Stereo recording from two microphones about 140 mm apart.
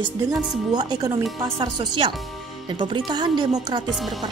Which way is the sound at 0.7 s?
30° right (ahead or behind).